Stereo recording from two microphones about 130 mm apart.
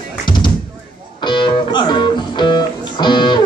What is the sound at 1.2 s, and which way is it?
Music, 35° left (ahead or behind).